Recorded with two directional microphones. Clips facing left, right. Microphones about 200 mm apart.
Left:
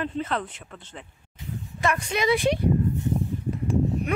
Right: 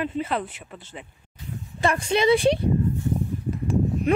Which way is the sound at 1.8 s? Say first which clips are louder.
Right 4 dB; 30° right (ahead or behind).